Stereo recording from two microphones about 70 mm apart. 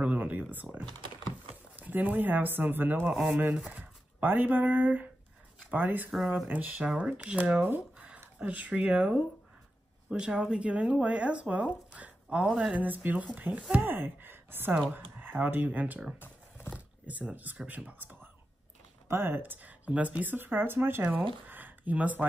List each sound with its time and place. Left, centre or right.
0.0 s a sound: right
1.8 s speech: right
3.5 s speech: centre
4.2 s speech: right
16.2 s a sound: left
17.0 s speech: right